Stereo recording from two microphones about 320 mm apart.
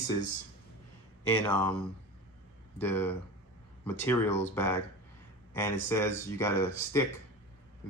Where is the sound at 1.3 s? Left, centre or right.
Centre.